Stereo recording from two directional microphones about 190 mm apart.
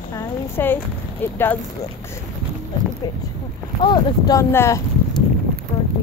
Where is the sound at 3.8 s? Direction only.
20° left (ahead or behind).